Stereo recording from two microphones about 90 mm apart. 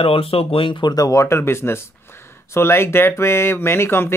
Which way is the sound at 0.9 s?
35° left (ahead or behind).